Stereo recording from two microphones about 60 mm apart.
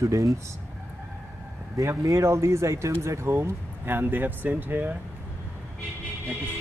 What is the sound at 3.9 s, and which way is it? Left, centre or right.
Speech, right.